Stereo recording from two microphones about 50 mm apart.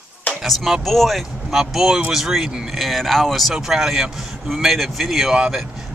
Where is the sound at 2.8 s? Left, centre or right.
Centre.